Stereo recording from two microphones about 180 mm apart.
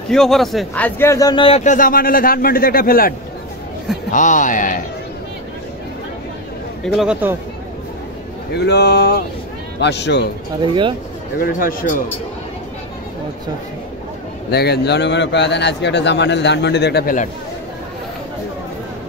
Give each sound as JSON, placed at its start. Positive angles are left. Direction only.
{"t": 0.1, "sound": "a man's voice", "side_deg": 0}
{"t": 1.4, "sound": "a man's voice", "side_deg": 40}
{"t": 6.8, "sound": "speech", "side_deg": -5}
{"t": 8.5, "sound": "a man's voice", "side_deg": 65}
{"t": 10.7, "sound": "speech", "side_deg": -25}
{"t": 11.3, "sound": "a man's voice", "side_deg": 55}
{"t": 14.5, "sound": "a man's voice", "side_deg": 65}